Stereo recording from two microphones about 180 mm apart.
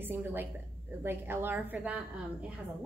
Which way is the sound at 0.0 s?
10° right (ahead or behind).